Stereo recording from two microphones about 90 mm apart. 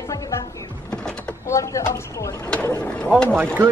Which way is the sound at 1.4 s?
35° left (ahead or behind).